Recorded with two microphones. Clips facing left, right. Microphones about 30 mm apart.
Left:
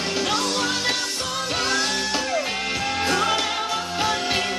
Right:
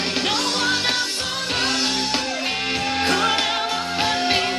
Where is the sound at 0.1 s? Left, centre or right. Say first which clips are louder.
Left 1 dB; right.